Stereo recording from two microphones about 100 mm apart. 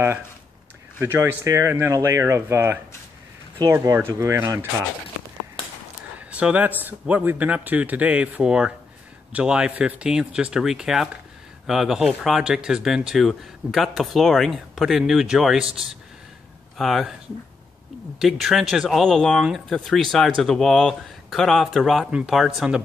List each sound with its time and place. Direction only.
0.9 s speech: 25° right (ahead or behind)
3.6 s speech: 40° right (ahead or behind)
4.1 s speech: 30° right (ahead or behind)
6.1 s a sound: 15° right (ahead or behind)
6.8 s speech: 15° right (ahead or behind)
16.7 s speech: centre (ahead or behind)
18.2 s speech: 5° right (ahead or behind)